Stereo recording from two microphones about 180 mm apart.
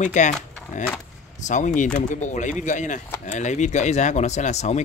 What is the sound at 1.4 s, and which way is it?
Speech, 45° left (ahead or behind).